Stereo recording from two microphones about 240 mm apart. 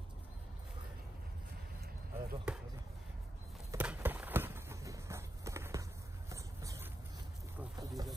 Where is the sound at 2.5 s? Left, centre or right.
Centre.